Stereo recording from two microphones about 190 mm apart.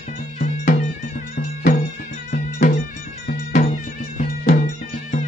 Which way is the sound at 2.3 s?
40° left (ahead or behind).